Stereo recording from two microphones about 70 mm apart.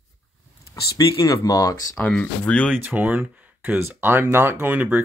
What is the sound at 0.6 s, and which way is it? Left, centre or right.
Speech, left.